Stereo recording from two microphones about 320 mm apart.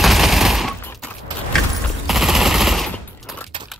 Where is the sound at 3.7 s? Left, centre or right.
Centre.